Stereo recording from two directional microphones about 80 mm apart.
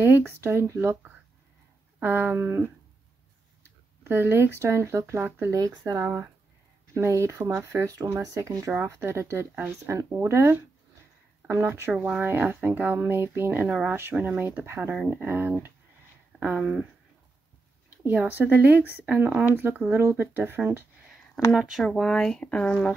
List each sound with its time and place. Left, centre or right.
0.0 s speech: right
5.5 s speech: right
11.9 s speech: centre
16.4 s speech: centre
18.1 s speech: right
21.5 s speech: centre